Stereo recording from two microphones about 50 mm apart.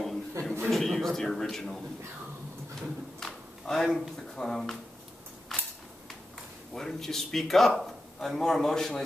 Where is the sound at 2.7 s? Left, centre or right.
Centre.